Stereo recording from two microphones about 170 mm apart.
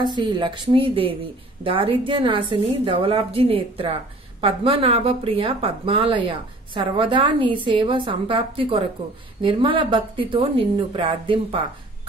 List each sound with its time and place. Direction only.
0.0 s a woman's voice: 25° right (ahead or behind)